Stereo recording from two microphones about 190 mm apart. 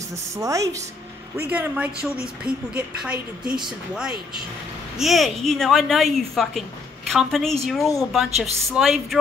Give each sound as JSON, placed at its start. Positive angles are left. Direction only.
{"t": 0.4, "sound": "a woman's voice", "side_deg": -15}
{"t": 4.9, "sound": "a woman's voice", "side_deg": 0}